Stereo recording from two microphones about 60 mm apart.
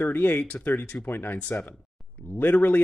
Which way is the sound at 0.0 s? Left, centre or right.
Left.